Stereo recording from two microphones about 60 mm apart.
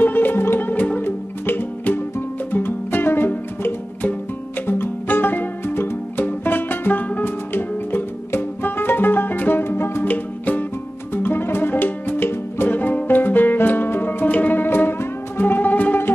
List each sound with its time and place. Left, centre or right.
0.0 s music: left
10.0 s music: left